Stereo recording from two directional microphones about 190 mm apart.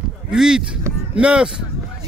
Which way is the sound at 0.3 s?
5° right (ahead or behind).